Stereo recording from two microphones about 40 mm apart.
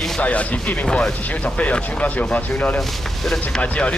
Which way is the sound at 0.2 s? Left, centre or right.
Left.